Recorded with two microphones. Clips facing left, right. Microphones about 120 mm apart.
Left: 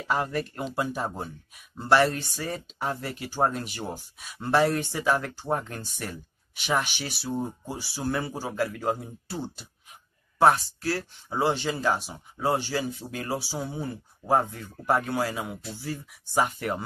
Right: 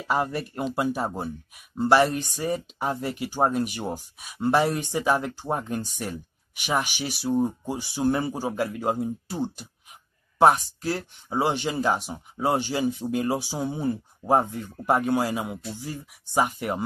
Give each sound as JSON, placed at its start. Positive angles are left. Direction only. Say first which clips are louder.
{"t": 0.1, "sound": "speech", "louder": "right 2 dB", "side_deg": -15}